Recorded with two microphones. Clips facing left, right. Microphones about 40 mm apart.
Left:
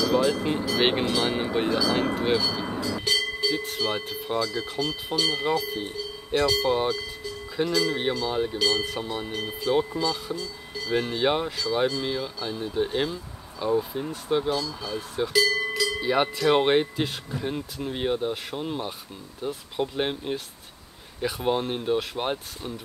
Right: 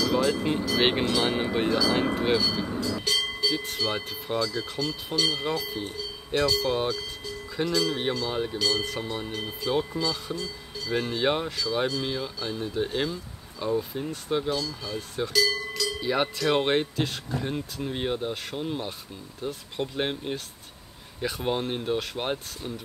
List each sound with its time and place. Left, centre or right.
0.0 s speech: centre
2.6 s speech: centre
3.0 s speech: centre
17.3 s speech: centre